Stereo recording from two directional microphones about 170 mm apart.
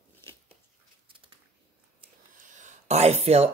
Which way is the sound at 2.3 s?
50° right (ahead or behind).